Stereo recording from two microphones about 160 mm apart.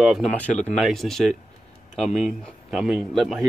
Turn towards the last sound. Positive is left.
turn(degrees=0)  # may be behind; listen again after turning